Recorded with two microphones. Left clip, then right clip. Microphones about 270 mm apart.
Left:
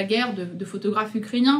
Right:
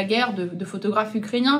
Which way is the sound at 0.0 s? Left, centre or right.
Centre.